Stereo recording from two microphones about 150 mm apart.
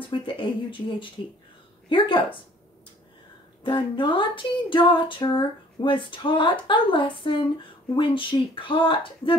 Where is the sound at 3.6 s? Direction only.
35° left (ahead or behind).